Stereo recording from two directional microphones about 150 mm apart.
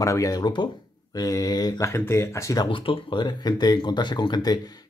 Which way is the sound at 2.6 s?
35° left (ahead or behind).